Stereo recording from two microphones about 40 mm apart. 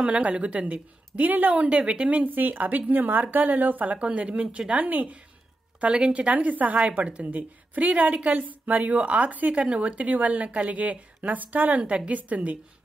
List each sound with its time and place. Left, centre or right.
0.0 s a woman's voice: right
5.8 s a woman's voice: right